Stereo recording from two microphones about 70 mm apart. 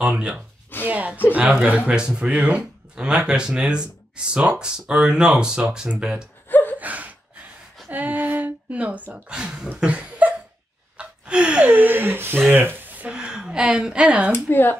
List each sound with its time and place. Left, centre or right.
0.0 s speech: centre
0.8 s a sound: right
1.3 s speech: centre
6.8 s gasp: right
7.9 s speech: right
9.3 s speech: centre
9.8 s a sound: centre
11.8 s speech: right
12.5 s a sound: right
13.1 s speech: centre
14.3 s speech: left